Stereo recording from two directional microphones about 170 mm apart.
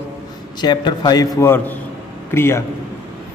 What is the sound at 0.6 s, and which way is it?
A man's voice, 25° left (ahead or behind).